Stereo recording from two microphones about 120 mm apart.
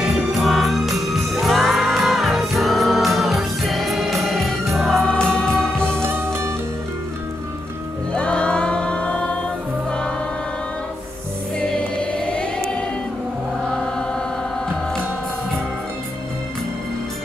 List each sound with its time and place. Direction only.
0.0 s music: centre (ahead or behind)
6.0 s music: 20° right (ahead or behind)
8.1 s music: 10° left (ahead or behind)
11.6 s music: 5° left (ahead or behind)